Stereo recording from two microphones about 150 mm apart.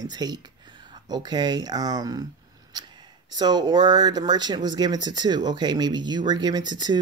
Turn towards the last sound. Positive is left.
turn(degrees=-30)  # may be behind; listen again after turning